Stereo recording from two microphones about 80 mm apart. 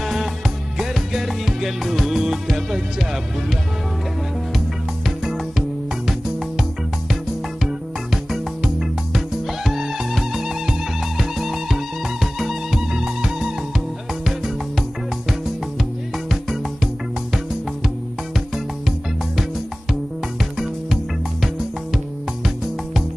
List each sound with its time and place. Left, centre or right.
0.0 s music: centre
5.0 s music: centre
7.6 s music: centre
19.9 s music: centre